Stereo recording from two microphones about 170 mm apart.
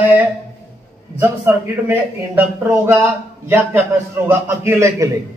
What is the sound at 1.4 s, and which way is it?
A man's voice, 15° right (ahead or behind).